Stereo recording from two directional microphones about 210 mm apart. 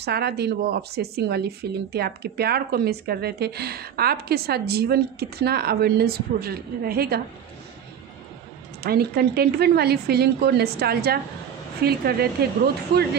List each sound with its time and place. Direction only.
0.0 s speech: 50° right (ahead or behind)
8.8 s speech: 50° right (ahead or behind)